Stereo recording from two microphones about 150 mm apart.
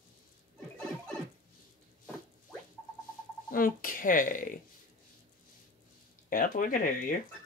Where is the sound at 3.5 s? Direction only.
70° left (ahead or behind).